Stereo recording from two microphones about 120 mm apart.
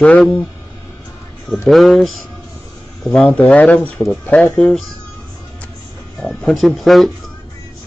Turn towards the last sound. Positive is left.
turn(degrees=0)  # may be behind; listen again after turning